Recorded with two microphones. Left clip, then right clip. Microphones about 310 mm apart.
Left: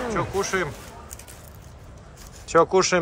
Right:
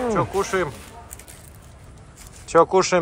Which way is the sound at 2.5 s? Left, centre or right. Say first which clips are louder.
Right 2 dB; centre.